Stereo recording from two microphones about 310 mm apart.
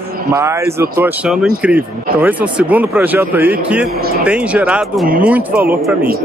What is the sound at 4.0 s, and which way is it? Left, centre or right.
Speech, right.